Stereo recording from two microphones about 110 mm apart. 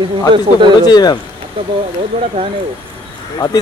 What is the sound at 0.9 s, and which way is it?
Speech, 40° left (ahead or behind).